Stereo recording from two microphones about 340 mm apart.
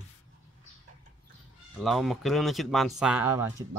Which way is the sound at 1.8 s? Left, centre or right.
Centre.